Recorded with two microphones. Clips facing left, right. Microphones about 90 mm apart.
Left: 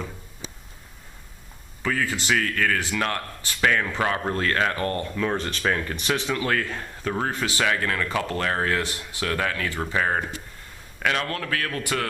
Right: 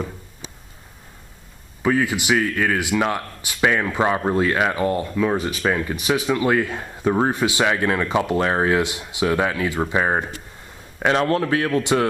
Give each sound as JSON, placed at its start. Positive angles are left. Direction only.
{"t": 1.8, "sound": "a man's voice", "side_deg": -20}